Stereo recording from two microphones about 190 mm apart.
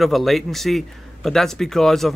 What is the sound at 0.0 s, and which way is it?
Speech, centre (ahead or behind).